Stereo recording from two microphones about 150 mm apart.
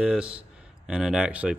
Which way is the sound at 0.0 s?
5° right (ahead or behind).